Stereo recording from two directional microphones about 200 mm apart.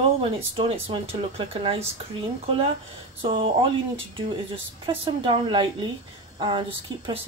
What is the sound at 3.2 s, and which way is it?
Speech, 25° right (ahead or behind).